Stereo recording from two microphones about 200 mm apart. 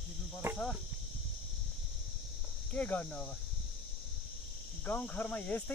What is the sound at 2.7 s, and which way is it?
Speech, 5° left (ahead or behind).